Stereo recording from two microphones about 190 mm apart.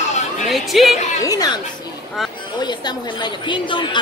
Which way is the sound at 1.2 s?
20° left (ahead or behind).